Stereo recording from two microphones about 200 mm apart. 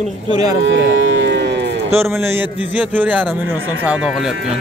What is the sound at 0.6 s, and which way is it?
Cattle, 65° right (ahead or behind).